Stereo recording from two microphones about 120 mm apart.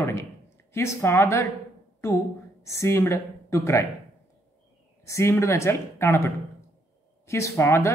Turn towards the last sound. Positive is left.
turn(degrees=20)  # may be behind; listen again after turning